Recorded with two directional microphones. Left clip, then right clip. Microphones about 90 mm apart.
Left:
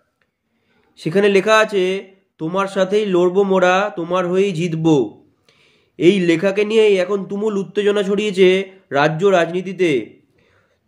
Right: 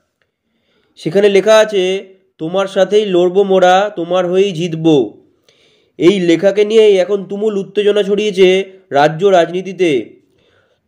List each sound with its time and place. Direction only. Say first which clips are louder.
0.9 s speech: right 4 dB; 30° right (ahead or behind)